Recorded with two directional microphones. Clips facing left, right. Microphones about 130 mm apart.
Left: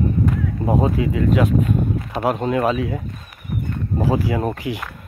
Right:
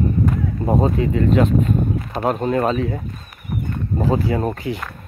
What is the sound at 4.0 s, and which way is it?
Speech, 10° left (ahead or behind).